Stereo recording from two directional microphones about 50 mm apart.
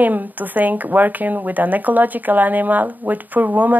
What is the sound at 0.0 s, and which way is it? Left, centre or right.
Speech, right.